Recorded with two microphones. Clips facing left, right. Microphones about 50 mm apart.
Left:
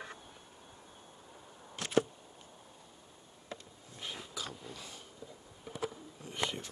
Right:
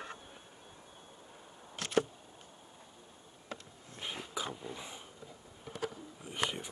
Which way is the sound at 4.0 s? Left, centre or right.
Right.